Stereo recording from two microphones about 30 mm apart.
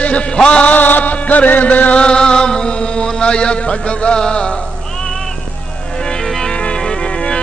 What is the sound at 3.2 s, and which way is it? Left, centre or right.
Music, left.